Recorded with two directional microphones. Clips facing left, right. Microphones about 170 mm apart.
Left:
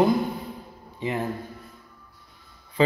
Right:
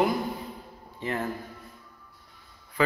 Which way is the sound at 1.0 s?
15° left (ahead or behind).